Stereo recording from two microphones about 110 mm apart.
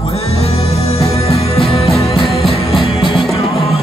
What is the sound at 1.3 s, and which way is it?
Music, centre (ahead or behind).